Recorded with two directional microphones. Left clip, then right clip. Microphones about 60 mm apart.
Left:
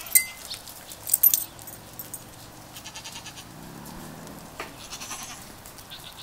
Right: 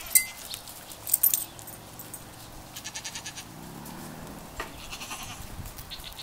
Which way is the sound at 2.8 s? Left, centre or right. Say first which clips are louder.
Right 2 dB; right.